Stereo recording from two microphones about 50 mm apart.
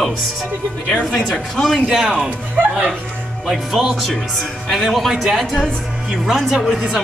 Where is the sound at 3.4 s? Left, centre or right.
Centre.